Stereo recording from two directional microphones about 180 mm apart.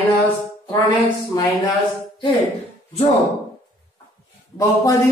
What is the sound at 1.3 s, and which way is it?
Speech, 20° left (ahead or behind).